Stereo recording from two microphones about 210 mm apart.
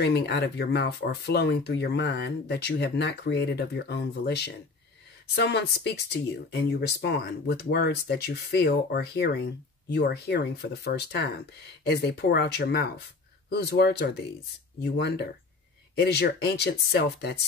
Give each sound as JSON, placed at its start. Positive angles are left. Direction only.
{"t": 0.0, "sound": "speech", "side_deg": 55}